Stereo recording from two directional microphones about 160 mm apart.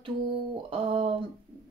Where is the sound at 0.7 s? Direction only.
35° right (ahead or behind).